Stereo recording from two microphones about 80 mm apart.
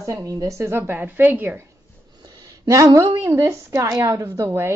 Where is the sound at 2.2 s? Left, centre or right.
Right.